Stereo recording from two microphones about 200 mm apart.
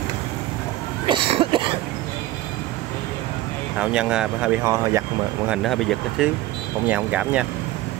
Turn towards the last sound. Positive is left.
turn(degrees=-5)  # may be behind; listen again after turning